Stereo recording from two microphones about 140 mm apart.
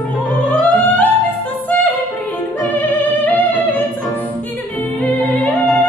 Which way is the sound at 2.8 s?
10° left (ahead or behind).